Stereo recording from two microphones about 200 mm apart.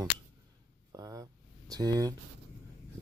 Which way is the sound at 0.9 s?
20° right (ahead or behind).